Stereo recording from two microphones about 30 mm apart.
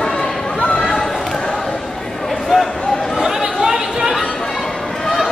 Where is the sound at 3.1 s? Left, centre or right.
Centre.